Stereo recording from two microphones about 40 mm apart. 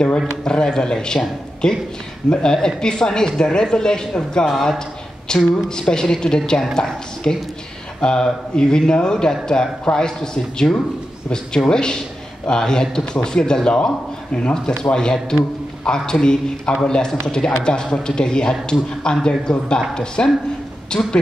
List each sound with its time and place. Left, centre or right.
0.5 s a man's voice: centre